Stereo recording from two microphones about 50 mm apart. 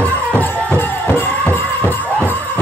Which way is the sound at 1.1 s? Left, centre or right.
Left.